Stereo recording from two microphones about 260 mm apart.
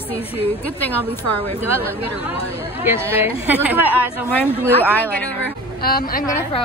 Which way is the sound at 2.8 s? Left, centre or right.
Centre.